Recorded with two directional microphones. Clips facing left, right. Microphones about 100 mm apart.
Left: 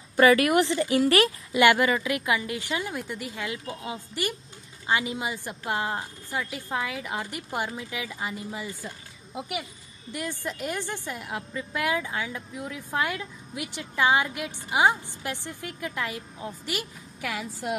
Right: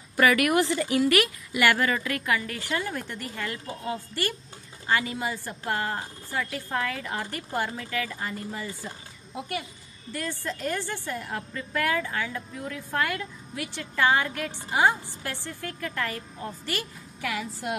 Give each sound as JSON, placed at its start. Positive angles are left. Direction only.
{"t": 0.2, "sound": "speech", "side_deg": 30}
{"t": 1.6, "sound": "a woman's voice", "side_deg": 15}